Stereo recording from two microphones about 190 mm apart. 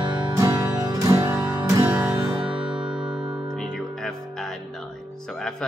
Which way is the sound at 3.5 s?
Centre (ahead or behind).